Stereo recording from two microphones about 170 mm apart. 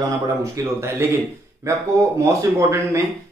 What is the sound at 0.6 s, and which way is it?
Speech, 20° right (ahead or behind).